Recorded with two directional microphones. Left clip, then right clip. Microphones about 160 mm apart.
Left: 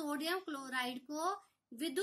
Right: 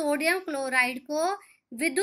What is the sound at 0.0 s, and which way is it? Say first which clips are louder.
A woman's voice: right 13 dB; 15° right (ahead or behind).